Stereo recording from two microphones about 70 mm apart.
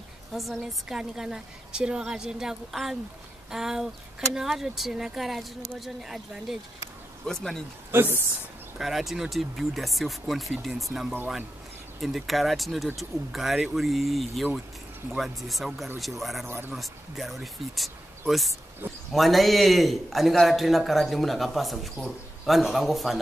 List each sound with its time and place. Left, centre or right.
0.3 s a woman's voice: centre
7.2 s speech: centre
7.9 s a woman's voice: right
8.7 s a man's voice: centre